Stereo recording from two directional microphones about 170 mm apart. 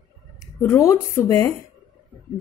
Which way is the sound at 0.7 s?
20° left (ahead or behind).